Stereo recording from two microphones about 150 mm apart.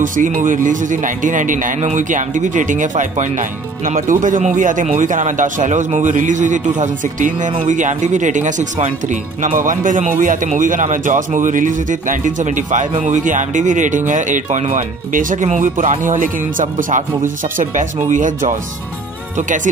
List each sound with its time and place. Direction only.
0.0 s speech: 60° right (ahead or behind)